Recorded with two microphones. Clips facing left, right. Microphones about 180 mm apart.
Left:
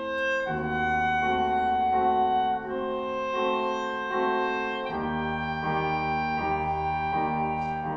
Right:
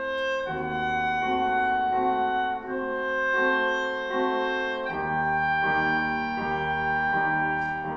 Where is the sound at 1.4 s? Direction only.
10° left (ahead or behind).